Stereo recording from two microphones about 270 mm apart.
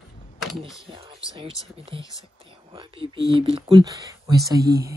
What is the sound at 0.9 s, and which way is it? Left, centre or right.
Speech, right.